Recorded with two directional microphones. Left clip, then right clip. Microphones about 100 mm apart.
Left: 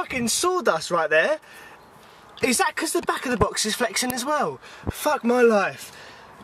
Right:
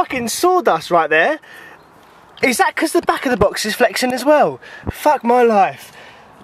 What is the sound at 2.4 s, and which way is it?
Speech, 15° right (ahead or behind).